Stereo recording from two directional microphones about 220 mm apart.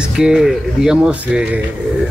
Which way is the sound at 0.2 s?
5° right (ahead or behind).